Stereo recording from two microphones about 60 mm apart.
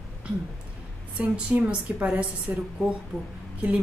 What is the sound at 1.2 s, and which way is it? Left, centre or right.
A woman's voice, right.